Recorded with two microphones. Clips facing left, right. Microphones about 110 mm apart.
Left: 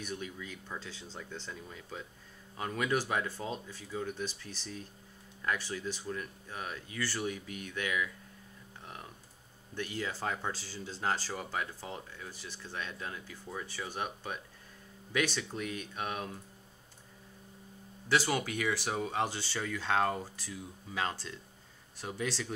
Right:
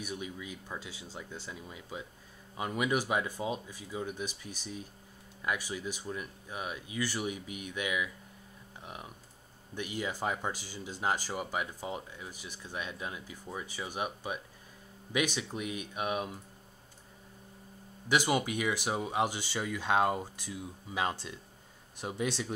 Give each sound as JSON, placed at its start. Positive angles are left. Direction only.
{"t": 0.0, "sound": "speech", "side_deg": -10}
{"t": 9.8, "sound": "speech", "side_deg": -15}
{"t": 18.0, "sound": "speech", "side_deg": -15}